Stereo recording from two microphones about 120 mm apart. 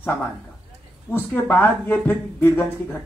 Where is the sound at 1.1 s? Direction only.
15° left (ahead or behind).